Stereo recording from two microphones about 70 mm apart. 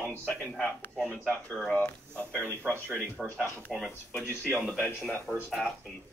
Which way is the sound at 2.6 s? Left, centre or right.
Right.